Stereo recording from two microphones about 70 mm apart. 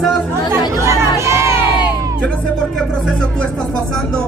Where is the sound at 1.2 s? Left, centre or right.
Right.